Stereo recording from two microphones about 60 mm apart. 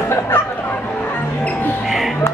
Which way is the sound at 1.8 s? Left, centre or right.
Centre.